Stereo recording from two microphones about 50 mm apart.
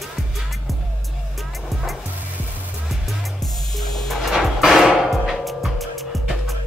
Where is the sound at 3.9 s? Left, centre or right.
Centre.